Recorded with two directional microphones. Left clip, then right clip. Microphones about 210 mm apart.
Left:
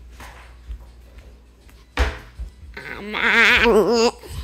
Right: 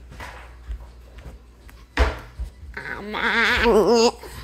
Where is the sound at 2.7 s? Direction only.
15° left (ahead or behind).